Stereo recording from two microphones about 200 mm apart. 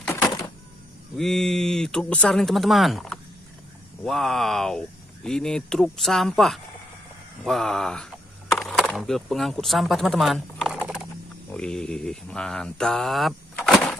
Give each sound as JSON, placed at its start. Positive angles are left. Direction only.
{"t": 0.1, "sound": "typewriter", "side_deg": 15}
{"t": 1.1, "sound": "speech", "side_deg": 0}
{"t": 11.5, "sound": "mantra", "side_deg": 5}